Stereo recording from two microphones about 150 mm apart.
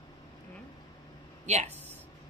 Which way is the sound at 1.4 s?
50° right (ahead or behind).